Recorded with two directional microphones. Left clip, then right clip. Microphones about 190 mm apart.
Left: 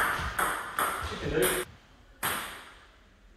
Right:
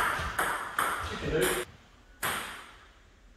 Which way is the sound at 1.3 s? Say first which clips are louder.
Left 1 dB; centre (ahead or behind).